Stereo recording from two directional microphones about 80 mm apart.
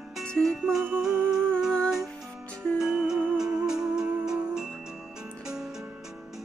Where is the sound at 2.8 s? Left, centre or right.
Centre.